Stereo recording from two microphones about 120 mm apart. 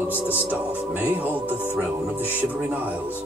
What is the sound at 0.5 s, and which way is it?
Music, 15° right (ahead or behind).